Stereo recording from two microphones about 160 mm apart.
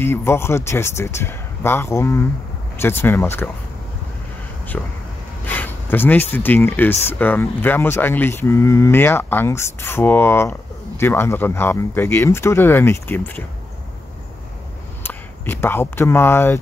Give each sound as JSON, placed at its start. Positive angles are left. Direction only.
{"t": 0.0, "sound": "speech", "side_deg": 15}
{"t": 4.7, "sound": "speech", "side_deg": 10}
{"t": 5.4, "sound": "a sound", "side_deg": 10}
{"t": 6.3, "sound": "speech", "side_deg": 10}
{"t": 15.0, "sound": "speech", "side_deg": 15}